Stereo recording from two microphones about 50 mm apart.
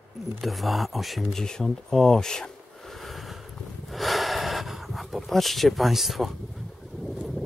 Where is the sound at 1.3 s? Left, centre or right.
Centre.